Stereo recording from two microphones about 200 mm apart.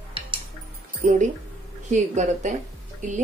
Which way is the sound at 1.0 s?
40° right (ahead or behind).